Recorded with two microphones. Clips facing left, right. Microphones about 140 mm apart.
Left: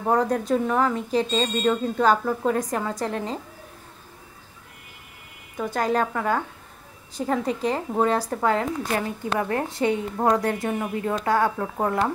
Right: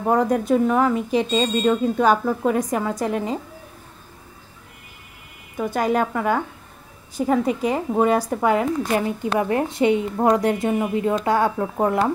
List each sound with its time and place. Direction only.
0.0 s speech: 5° right (ahead or behind)
5.6 s speech: 10° right (ahead or behind)